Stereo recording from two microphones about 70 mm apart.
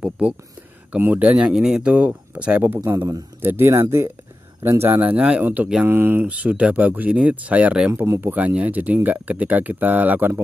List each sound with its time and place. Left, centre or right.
0.0 s speech: centre
3.3 s speech: right
5.1 s speech: centre; by 6.2 s right
6.2 s speech: right
7.9 s speech: right